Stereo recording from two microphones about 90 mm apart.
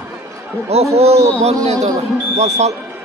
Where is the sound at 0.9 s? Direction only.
40° right (ahead or behind).